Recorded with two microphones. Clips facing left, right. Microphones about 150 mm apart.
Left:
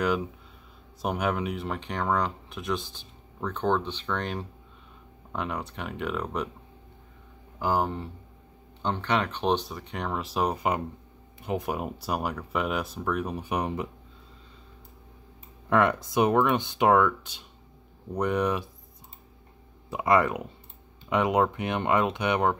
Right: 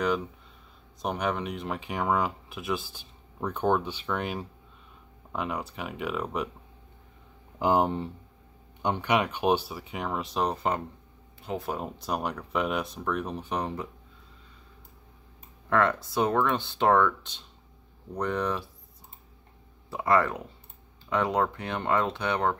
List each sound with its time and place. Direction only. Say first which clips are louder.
1.0 s speech: left 2 dB; 5° left (ahead or behind)
7.5 s speech: right 3 dB; 20° right (ahead or behind); by 13.8 s 15° left (ahead or behind)
15.7 s speech: left 2 dB; 15° left (ahead or behind)
19.9 s speech: left 2 dB; 15° left (ahead or behind)